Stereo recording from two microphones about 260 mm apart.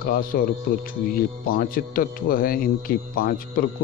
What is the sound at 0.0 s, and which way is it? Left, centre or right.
Speech, left.